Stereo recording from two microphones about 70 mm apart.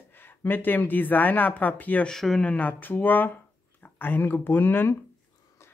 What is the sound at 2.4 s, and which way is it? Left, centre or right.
Speech, left.